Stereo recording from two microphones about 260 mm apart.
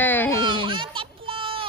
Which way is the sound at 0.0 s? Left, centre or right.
Centre.